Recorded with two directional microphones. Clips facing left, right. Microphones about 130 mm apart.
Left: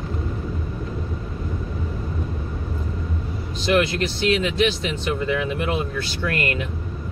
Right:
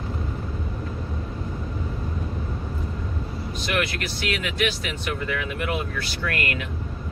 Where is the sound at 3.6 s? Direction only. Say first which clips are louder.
Left 7 dB; 25° left (ahead or behind).